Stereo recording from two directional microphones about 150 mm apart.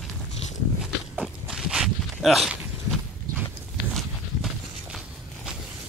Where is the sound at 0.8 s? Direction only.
5° right (ahead or behind).